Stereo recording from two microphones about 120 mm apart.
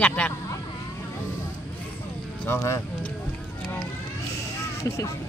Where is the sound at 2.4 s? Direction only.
20° left (ahead or behind).